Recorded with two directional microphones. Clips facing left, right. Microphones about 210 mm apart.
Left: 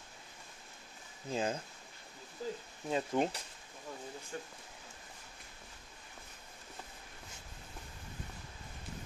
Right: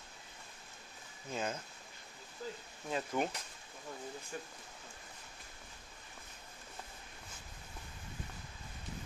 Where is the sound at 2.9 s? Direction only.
25° left (ahead or behind).